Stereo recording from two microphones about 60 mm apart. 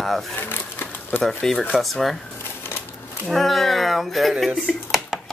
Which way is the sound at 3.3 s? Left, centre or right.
Centre.